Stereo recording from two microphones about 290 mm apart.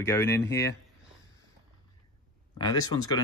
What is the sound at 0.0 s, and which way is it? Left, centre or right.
Speech, centre.